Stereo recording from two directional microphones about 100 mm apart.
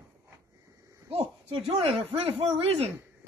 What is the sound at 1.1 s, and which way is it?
Speech, 75° right (ahead or behind).